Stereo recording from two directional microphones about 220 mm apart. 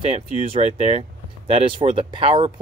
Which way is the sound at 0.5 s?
30° right (ahead or behind).